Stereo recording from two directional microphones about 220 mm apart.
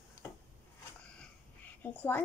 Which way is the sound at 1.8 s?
10° left (ahead or behind).